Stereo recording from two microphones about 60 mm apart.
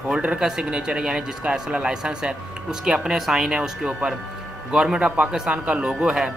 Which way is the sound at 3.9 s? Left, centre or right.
Right.